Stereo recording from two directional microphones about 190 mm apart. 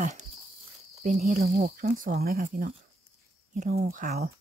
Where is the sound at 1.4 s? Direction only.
50° right (ahead or behind).